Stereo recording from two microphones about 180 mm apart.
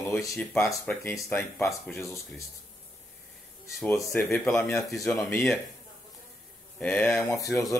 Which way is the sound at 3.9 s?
15° left (ahead or behind).